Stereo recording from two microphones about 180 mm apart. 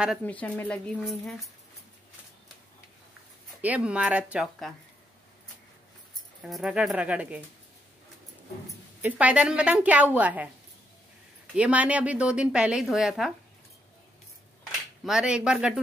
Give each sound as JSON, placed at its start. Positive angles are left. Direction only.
{"t": 0.2, "sound": "speech", "side_deg": 10}
{"t": 3.6, "sound": "a woman's voice", "side_deg": -5}
{"t": 6.4, "sound": "a woman's voice", "side_deg": -5}
{"t": 9.0, "sound": "a woman's voice", "side_deg": -5}
{"t": 11.5, "sound": "a woman's voice", "side_deg": -5}
{"t": 15.0, "sound": "a woman's voice", "side_deg": -5}